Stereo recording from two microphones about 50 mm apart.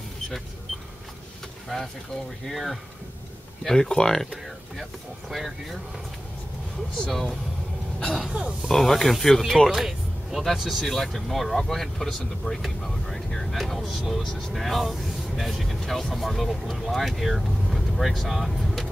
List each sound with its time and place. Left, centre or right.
1.7 s speech: centre
5.3 s speech: centre
7.0 s speech: centre
8.3 s speech: centre
8.6 s speech: centre